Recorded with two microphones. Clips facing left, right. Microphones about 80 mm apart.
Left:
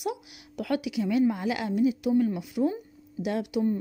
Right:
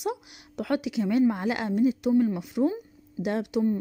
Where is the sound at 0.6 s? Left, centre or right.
Right.